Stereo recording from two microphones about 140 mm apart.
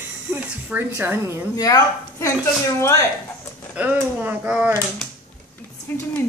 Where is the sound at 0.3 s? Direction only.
15° right (ahead or behind).